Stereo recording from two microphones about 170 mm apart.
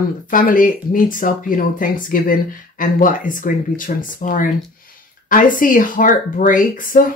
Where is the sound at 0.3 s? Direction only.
55° left (ahead or behind).